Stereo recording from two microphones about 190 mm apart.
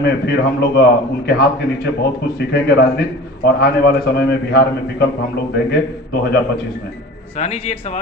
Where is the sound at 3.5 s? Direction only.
55° left (ahead or behind).